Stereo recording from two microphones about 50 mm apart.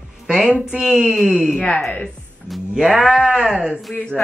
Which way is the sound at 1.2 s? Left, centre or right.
Centre.